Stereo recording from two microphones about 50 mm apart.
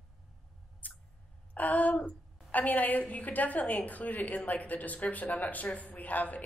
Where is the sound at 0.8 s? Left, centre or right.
Left.